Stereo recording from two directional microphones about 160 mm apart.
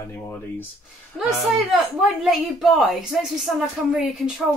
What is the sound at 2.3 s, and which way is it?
Speech, centre (ahead or behind).